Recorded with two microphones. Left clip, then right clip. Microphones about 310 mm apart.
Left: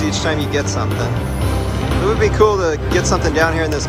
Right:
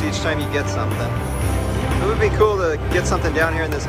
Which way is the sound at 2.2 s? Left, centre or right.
Centre.